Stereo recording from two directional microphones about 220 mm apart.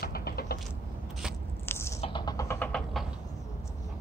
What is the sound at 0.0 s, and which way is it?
Typing, 45° left (ahead or behind).